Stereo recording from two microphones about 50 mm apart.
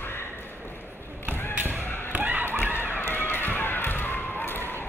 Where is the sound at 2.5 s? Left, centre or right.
Left.